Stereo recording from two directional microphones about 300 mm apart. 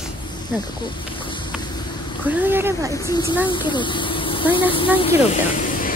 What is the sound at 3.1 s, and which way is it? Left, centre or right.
Speech, centre.